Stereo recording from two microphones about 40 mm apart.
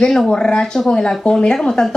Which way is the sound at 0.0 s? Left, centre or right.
Centre.